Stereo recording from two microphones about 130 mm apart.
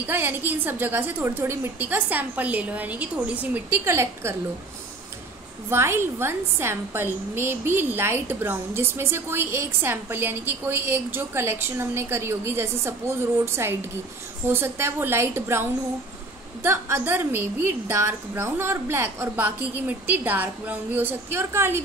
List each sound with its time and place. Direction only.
0.0 s a woman's voice: 15° right (ahead or behind)
5.7 s a woman's voice: 20° right (ahead or behind)
16.6 s a woman's voice: 20° right (ahead or behind)